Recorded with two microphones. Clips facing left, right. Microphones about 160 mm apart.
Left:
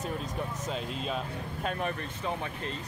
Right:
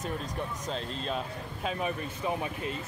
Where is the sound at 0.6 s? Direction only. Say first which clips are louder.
Even; 5° left (ahead or behind).